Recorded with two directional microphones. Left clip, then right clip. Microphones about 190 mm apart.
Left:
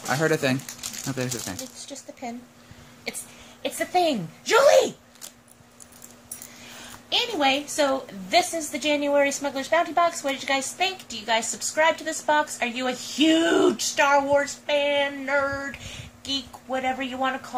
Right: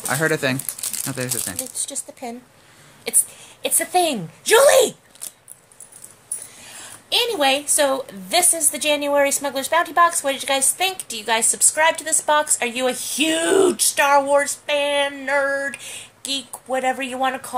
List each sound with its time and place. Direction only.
0.1 s speech: centre (ahead or behind)
3.6 s a woman's voice: 35° right (ahead or behind)
7.1 s a woman's voice: 40° right (ahead or behind)